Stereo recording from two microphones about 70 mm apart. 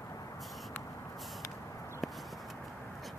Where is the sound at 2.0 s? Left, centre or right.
Centre.